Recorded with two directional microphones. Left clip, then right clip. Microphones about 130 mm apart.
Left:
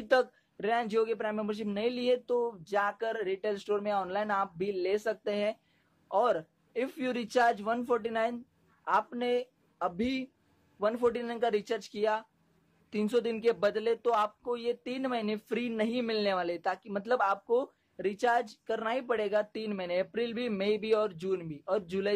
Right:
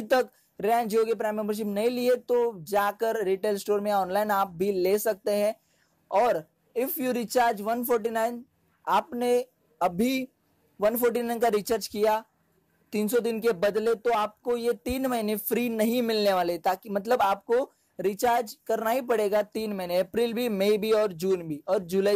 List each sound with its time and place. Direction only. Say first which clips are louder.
0.1 s a woman's voice: right 2 dB; 40° right (ahead or behind)